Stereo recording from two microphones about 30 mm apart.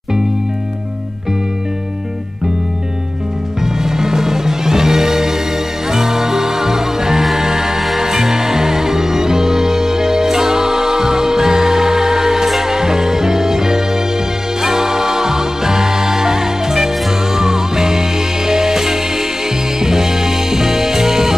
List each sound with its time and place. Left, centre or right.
3.8 s music: centre